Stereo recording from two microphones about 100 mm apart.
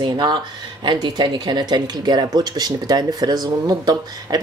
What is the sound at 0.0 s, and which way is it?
Speech, 50° right (ahead or behind).